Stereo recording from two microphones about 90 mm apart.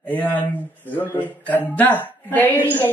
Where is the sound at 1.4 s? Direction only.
20° left (ahead or behind).